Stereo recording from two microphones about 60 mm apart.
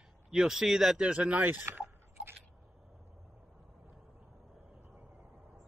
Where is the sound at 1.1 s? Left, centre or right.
Right.